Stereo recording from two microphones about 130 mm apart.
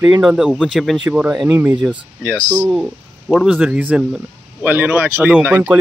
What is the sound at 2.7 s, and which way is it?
Speech, 10° right (ahead or behind).